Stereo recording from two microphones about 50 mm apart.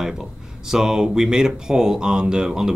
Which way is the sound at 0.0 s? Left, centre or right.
Centre.